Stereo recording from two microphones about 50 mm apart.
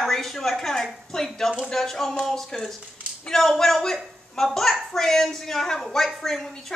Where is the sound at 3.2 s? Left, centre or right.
Centre.